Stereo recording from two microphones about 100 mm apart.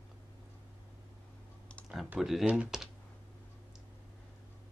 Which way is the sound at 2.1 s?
Centre (ahead or behind).